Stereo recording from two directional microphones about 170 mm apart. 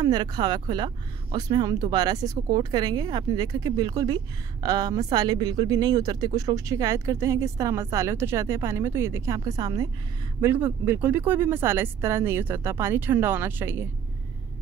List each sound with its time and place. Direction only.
0.0 s speech: 25° right (ahead or behind)